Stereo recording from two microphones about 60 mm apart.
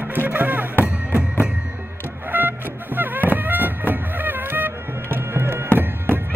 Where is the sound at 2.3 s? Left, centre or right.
Right.